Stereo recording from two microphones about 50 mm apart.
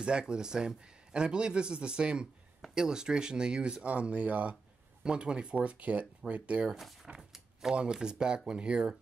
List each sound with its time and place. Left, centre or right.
0.0 s a man's voice: centre
6.7 s speech: centre
7.2 s drawer open or close: centre
7.7 s a man's voice: centre